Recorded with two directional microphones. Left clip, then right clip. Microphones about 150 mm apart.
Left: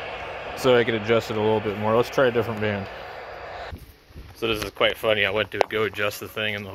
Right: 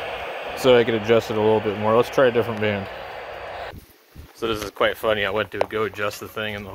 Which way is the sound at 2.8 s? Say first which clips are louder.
Right 3 dB; 10° left (ahead or behind).